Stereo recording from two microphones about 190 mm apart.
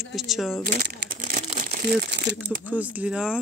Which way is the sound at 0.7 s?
45° right (ahead or behind).